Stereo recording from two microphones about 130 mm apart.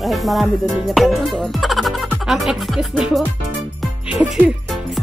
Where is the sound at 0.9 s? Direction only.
Centre (ahead or behind).